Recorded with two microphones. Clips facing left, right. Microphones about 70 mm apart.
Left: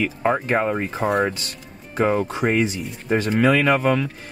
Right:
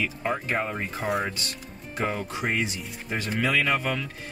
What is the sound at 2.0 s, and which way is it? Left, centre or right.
Speech, left.